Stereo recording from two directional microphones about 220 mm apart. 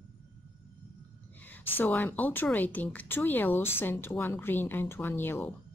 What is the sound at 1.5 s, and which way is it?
Speech, 10° left (ahead or behind).